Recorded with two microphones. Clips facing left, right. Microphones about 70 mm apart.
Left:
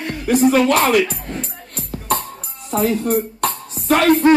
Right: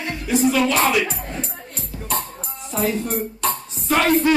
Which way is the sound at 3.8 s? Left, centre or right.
Left.